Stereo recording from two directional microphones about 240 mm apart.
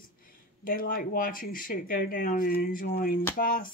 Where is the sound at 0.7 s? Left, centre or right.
Left.